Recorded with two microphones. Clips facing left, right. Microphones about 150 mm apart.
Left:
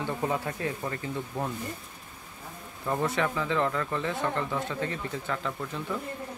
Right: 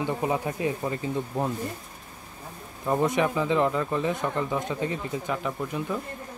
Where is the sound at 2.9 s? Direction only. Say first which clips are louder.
Right 4 dB; 20° right (ahead or behind).